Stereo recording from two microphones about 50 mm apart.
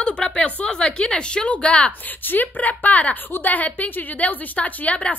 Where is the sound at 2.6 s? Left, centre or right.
Left.